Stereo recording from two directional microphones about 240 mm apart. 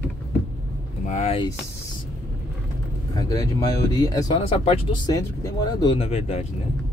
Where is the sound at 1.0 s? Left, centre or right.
Left.